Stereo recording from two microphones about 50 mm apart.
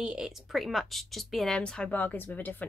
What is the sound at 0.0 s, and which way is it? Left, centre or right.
Speech, centre.